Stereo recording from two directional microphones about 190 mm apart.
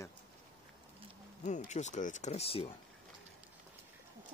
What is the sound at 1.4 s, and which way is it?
Speech, 40° left (ahead or behind).